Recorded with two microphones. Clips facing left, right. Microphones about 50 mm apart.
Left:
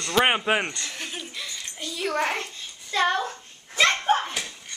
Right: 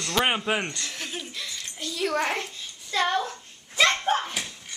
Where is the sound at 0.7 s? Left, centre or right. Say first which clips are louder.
Even; centre.